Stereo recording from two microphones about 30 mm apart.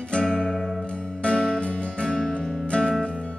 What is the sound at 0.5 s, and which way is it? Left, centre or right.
Music, centre.